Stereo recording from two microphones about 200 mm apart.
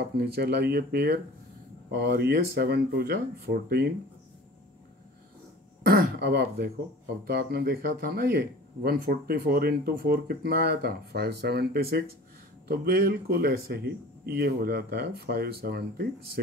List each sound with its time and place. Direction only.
0.3 s speech: 55° right (ahead or behind)
5.9 s speech: 50° right (ahead or behind)